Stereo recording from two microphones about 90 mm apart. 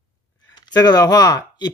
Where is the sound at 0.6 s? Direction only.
50° left (ahead or behind).